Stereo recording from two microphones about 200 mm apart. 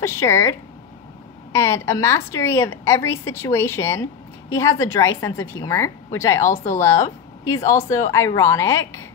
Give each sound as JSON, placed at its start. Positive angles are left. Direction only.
{"t": 0.0, "sound": "a woman's voice", "side_deg": 15}
{"t": 6.4, "sound": "speech", "side_deg": 40}
{"t": 6.8, "sound": "a woman's voice", "side_deg": 15}